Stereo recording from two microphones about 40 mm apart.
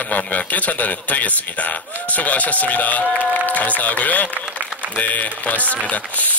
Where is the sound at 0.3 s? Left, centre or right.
Left.